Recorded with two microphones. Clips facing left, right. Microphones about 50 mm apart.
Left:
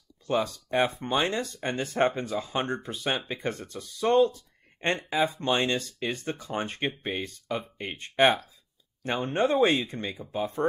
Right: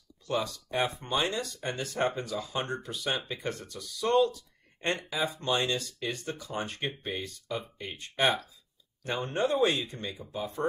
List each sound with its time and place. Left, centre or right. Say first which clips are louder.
0.3 s speech: left 4 dB; left